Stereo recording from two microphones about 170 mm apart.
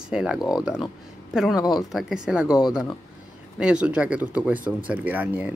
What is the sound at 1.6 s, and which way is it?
Speech, 25° left (ahead or behind).